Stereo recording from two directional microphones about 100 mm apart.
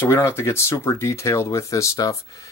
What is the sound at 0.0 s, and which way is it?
Speech, 25° left (ahead or behind).